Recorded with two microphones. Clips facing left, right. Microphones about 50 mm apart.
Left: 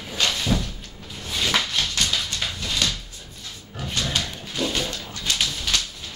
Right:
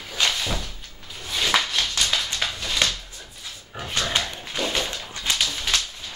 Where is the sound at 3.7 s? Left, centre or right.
Right.